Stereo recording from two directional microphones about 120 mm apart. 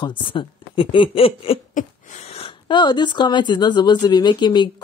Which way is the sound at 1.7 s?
80° left.